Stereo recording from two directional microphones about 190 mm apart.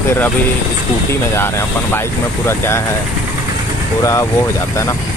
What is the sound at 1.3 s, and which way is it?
Speech, 15° left (ahead or behind).